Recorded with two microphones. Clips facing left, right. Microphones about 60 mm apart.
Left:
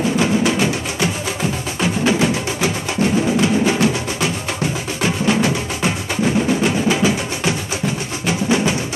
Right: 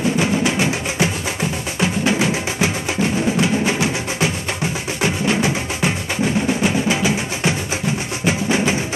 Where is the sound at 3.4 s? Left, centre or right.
Centre.